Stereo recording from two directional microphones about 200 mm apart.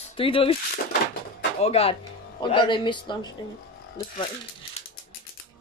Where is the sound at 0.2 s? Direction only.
25° left (ahead or behind).